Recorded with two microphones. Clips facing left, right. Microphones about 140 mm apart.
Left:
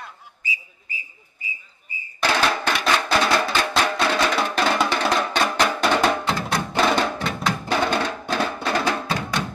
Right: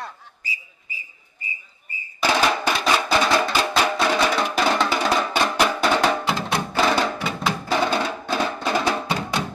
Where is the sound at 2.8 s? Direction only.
10° right (ahead or behind).